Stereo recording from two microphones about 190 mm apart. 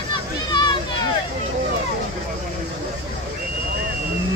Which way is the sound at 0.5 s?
25° left (ahead or behind).